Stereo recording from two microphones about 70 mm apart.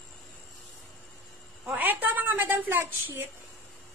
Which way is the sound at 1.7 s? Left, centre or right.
Right.